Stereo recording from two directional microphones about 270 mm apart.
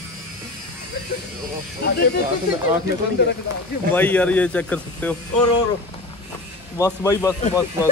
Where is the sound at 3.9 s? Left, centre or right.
Centre.